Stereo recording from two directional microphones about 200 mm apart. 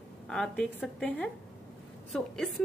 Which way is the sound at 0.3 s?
5° left (ahead or behind).